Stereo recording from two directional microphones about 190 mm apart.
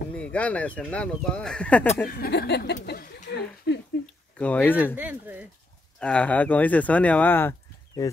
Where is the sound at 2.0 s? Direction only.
50° left (ahead or behind).